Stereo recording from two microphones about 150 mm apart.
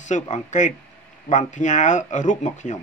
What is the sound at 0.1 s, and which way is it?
Speech, 55° left (ahead or behind).